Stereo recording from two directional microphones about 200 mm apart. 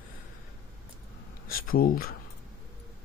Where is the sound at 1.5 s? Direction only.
45° left (ahead or behind).